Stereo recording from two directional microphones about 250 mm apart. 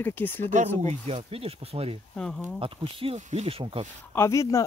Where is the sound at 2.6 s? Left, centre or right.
Right.